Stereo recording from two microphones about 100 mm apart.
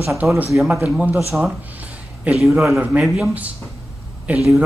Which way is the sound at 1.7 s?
15° right (ahead or behind).